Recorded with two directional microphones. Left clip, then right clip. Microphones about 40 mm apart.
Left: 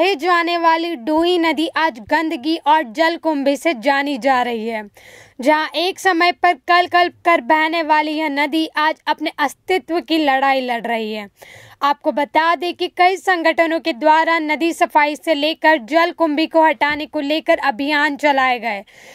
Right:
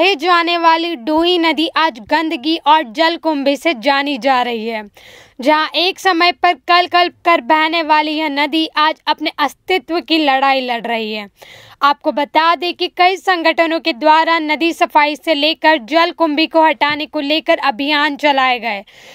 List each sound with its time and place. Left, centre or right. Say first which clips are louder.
0.0 s a woman's voice: right 3 dB; left